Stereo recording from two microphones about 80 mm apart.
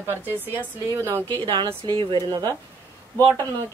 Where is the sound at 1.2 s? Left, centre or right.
Right.